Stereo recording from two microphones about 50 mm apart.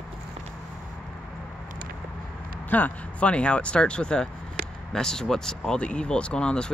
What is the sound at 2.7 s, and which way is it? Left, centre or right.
Speech, left.